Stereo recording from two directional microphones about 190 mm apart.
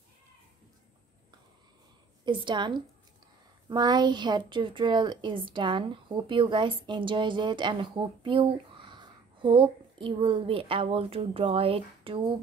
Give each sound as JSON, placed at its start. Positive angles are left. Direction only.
{"t": 2.2, "sound": "a woman's voice", "side_deg": -25}